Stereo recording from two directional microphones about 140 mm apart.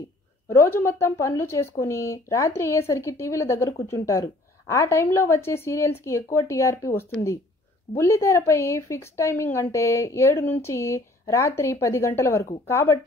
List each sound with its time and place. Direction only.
0.5 s speech: 20° left (ahead or behind)